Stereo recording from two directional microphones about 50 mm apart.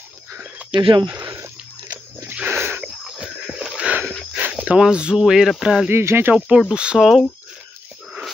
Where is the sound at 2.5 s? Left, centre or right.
Right.